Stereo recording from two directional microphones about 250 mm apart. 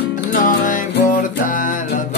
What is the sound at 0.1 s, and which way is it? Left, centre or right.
Music, left.